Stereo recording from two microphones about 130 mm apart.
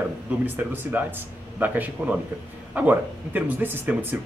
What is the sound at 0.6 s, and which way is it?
A man's voice, 15° right (ahead or behind).